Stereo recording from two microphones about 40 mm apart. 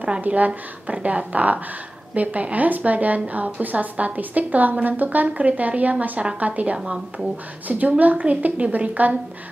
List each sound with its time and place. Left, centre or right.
0.2 s a woman's voice: right
6.8 s speech: centre
7.6 s a woman's voice: right